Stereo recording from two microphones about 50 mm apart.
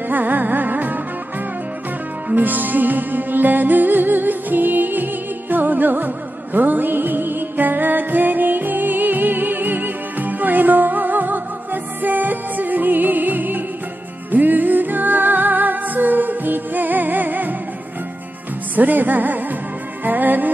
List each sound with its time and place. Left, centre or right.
0.1 s music: right
2.2 s music: right
18.8 s music: right